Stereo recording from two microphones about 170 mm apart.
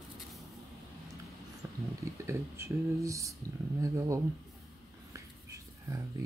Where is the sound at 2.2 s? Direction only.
15° right (ahead or behind).